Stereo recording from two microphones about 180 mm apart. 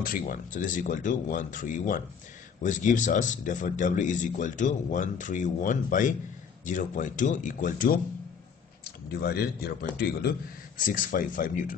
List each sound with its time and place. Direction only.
0.0 s speech: 50° left (ahead or behind)
9.1 s speech: 60° left (ahead or behind)
10.8 s speech: 45° left (ahead or behind)